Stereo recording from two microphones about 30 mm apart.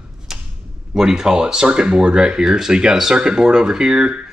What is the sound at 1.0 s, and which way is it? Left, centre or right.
Speech, centre.